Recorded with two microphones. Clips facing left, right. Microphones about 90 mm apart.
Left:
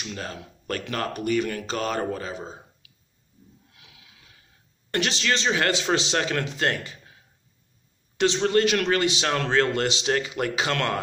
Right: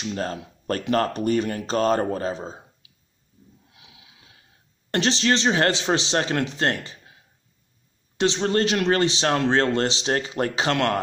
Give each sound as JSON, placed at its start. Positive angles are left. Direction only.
{"t": 0.0, "sound": "speech", "side_deg": -35}
{"t": 3.7, "sound": "snort", "side_deg": -25}
{"t": 4.9, "sound": "a man's voice", "side_deg": -30}
{"t": 8.2, "sound": "a man's voice", "side_deg": -25}